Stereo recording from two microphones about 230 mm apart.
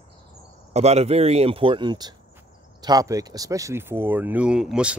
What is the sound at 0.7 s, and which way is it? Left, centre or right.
Speech, right.